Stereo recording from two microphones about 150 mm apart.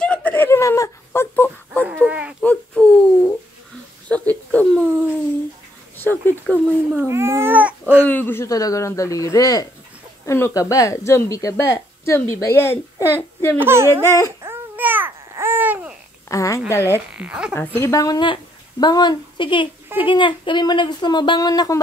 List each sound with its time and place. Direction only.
0.0 s whimper: 10° left (ahead or behind)
2.0 s a sound: 10° right (ahead or behind)
2.4 s baby cry: 5° left (ahead or behind)
4.1 s a sound: 10° left (ahead or behind)
5.9 s a sound: 15° left (ahead or behind)
6.4 s speech: centre (ahead or behind)
7.0 s speech: 15° right (ahead or behind)
8.0 s speech: 10° left (ahead or behind)
13.6 s speech: 15° right (ahead or behind)
14.4 s babbling: 15° right (ahead or behind)
16.3 s a woman's voice: 20° left (ahead or behind)
17.1 s speech: 5° right (ahead or behind)
17.7 s a woman's voice: 20° left (ahead or behind)